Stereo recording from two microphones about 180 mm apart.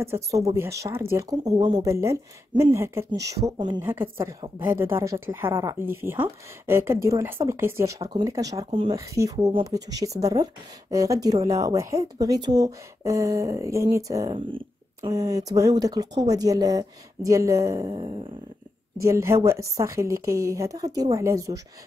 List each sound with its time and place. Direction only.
0.0 s a woman's voice: 15° right (ahead or behind)
3.8 s a woman's voice: 15° right (ahead or behind)
8.6 s speech: 30° right (ahead or behind)
8.9 s a woman's voice: 15° right (ahead or behind)